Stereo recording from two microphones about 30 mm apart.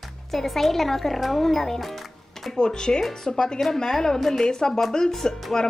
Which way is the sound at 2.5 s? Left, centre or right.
Left.